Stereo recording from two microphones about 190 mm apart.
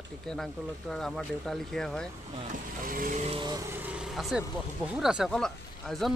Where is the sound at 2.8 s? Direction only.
45° right (ahead or behind).